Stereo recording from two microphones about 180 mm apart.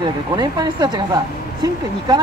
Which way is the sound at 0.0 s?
25° right (ahead or behind).